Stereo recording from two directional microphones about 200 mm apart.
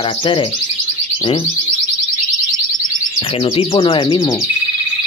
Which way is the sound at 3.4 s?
25° left (ahead or behind).